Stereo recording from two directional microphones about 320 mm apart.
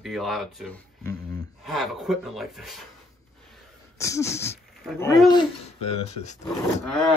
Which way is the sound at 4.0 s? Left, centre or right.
Centre.